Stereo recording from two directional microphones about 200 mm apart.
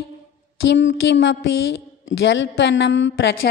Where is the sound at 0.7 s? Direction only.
65° left (ahead or behind).